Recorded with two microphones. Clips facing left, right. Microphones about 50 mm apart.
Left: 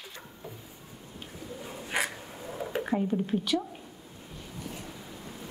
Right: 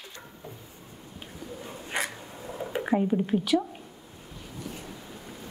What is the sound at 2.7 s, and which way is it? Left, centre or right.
Speech, centre.